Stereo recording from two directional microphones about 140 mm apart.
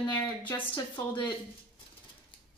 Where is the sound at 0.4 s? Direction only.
15° left (ahead or behind).